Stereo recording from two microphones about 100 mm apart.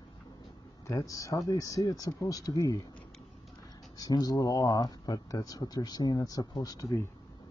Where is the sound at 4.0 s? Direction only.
40° left (ahead or behind).